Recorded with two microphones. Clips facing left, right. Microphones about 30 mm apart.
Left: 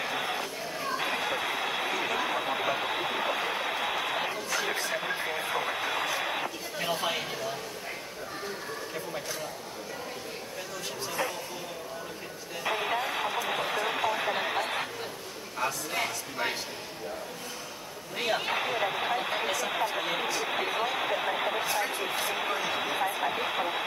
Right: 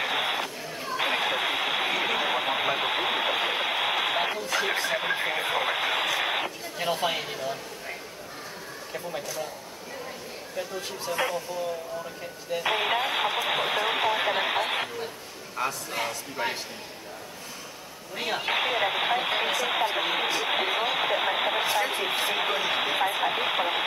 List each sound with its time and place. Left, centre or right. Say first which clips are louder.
0.0 s music: right 4 dB; right
0.9 s a sound: right 6 dB; right
6.4 s a sound: right 2 dB; right
11.1 s speech: right 5 dB; right
12.6 s speech: right 3 dB; right
18.5 s speech: right 4 dB; right